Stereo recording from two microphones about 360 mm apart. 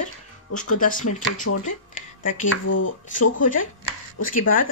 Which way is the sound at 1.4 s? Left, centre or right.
Left.